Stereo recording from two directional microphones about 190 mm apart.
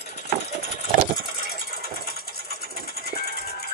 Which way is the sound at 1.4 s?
55° left (ahead or behind).